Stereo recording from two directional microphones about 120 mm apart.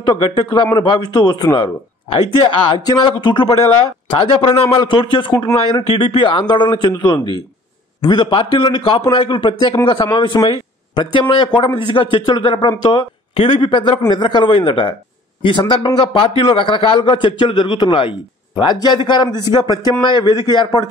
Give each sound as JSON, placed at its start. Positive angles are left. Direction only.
{"t": 0.0, "sound": "a man's voice", "side_deg": 40}